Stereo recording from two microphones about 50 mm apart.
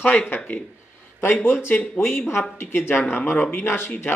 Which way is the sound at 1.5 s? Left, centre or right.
Left.